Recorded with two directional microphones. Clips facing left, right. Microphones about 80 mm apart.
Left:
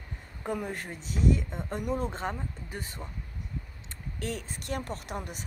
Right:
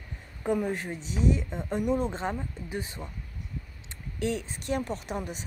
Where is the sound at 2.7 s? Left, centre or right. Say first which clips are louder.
Right 7 dB; centre.